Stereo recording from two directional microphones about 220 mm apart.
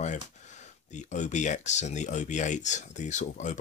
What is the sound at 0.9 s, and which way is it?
Speech, 35° left (ahead or behind).